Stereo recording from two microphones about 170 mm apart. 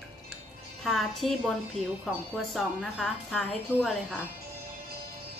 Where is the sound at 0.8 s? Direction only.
Centre (ahead or behind).